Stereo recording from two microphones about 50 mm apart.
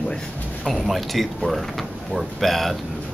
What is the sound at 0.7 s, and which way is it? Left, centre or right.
Speech, centre.